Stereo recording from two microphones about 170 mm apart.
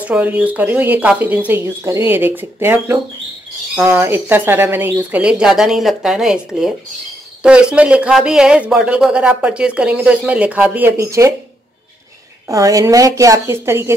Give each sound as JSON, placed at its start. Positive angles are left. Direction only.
{"t": 0.0, "sound": "speech", "side_deg": -10}
{"t": 12.4, "sound": "a woman's voice", "side_deg": -20}